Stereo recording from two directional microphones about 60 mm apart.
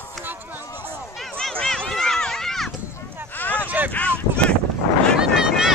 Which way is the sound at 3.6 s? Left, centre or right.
Right.